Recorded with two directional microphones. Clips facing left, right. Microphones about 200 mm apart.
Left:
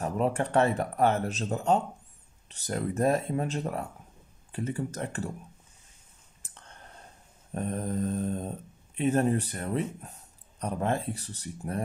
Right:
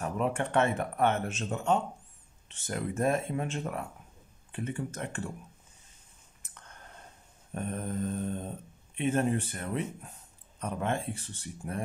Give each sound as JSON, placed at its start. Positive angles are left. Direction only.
{"t": 0.0, "sound": "speech", "side_deg": 35}
{"t": 6.4, "sound": "clicking", "side_deg": 30}
{"t": 7.5, "sound": "speech", "side_deg": 35}